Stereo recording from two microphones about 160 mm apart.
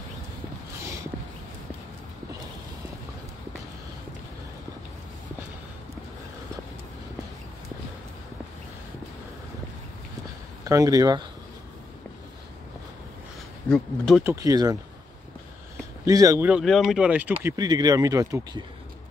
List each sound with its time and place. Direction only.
10.6 s speech: 20° right (ahead or behind)
13.7 s speech: 5° left (ahead or behind)
14.2 s speech: 20° right (ahead or behind)
16.1 s speech: 20° right (ahead or behind)
16.4 s speech: 5° right (ahead or behind); by 18.7 s 25° right (ahead or behind)